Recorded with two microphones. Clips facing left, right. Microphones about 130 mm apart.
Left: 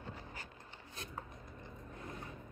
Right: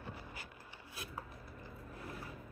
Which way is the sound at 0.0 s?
10° right (ahead or behind).